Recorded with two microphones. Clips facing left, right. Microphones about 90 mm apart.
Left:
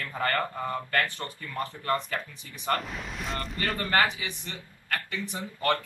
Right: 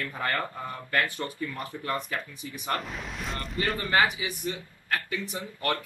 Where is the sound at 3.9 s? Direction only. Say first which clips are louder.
Even; 15° right (ahead or behind).